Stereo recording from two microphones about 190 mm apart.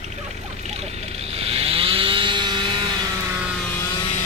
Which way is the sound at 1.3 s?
30° right (ahead or behind).